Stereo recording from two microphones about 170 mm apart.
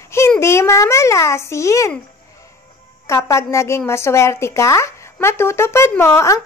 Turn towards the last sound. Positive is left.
turn(degrees=15)  # may be behind; listen again after turning